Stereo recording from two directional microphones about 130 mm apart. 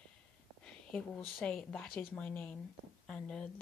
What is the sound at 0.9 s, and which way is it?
A woman's voice, 10° left (ahead or behind).